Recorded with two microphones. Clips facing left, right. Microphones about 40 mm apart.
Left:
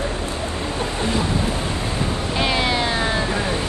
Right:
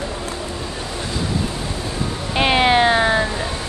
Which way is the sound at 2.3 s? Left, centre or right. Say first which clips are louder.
Right 7 dB; right.